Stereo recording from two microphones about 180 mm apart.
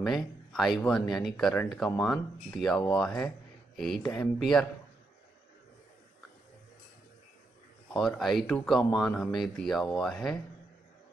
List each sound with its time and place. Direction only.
0.0 s speech: centre (ahead or behind)
7.9 s speech: centre (ahead or behind)